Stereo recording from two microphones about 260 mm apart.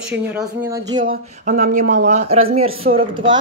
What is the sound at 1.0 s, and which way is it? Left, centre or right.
A woman's voice, right.